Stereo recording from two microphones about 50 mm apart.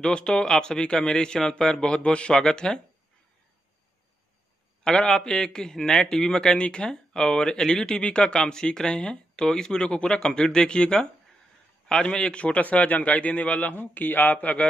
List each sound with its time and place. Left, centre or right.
0.0 s speech: centre
4.8 s speech: centre
7.8 s a man's voice: centre